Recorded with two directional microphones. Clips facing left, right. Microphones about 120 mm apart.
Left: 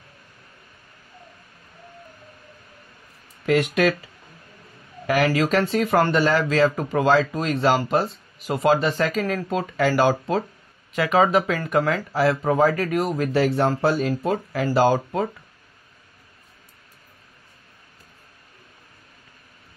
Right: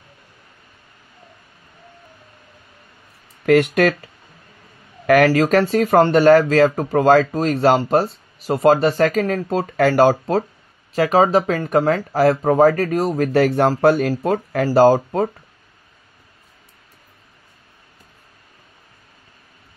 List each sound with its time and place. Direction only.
3.4 s speech: 50° right (ahead or behind)
5.0 s speech: 55° right (ahead or behind)
5.4 s speech: 40° right (ahead or behind)
14.7 s speech: 40° right (ahead or behind)